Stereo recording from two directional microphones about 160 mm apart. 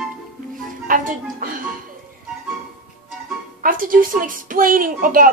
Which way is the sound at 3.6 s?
60° right (ahead or behind).